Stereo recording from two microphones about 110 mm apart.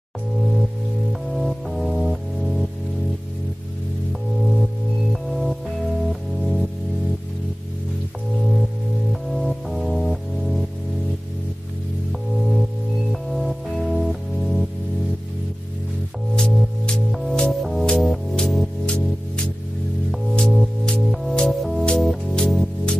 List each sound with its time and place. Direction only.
1.3 s music: centre (ahead or behind)
5.1 s music: centre (ahead or behind)
9.1 s music: centre (ahead or behind)
12.1 s music: centre (ahead or behind)
16.3 s music: 10° left (ahead or behind)